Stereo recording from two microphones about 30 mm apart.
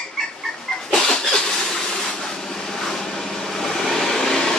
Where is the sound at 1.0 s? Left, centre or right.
Centre.